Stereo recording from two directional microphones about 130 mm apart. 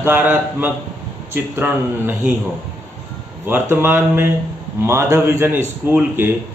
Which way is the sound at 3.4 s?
15° right (ahead or behind).